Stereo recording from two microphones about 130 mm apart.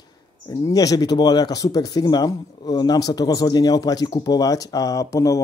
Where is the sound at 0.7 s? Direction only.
25° left (ahead or behind).